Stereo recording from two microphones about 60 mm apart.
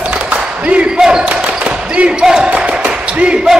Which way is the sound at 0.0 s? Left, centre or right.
Centre.